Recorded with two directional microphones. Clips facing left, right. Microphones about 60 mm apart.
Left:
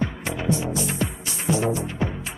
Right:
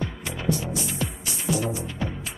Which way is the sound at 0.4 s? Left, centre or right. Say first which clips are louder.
Left 2 dB; left.